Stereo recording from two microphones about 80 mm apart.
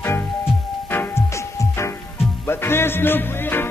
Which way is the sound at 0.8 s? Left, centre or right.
Left.